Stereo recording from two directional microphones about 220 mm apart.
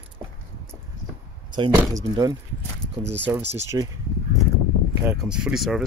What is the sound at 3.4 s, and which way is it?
Speech, 50° right (ahead or behind).